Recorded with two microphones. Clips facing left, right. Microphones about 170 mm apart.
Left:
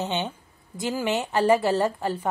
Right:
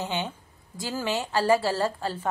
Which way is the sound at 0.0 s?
20° left (ahead or behind).